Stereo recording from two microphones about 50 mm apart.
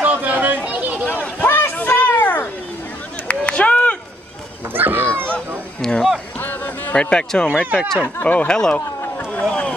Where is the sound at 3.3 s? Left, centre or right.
Left.